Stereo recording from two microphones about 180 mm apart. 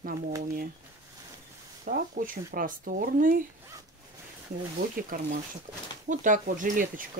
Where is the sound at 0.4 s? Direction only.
55° right (ahead or behind).